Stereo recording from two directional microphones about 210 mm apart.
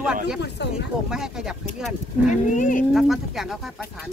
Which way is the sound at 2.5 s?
35° left (ahead or behind).